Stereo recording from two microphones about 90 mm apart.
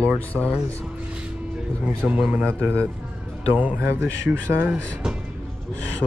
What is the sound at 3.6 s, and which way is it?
Speech, 15° right (ahead or behind).